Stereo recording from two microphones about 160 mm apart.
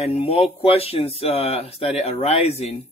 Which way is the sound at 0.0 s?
40° left (ahead or behind).